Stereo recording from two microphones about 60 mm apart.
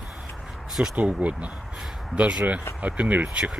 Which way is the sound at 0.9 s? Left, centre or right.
Right.